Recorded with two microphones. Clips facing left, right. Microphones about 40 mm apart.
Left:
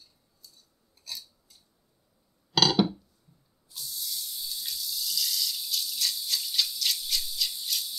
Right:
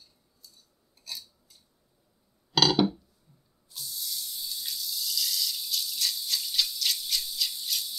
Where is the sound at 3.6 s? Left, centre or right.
Centre.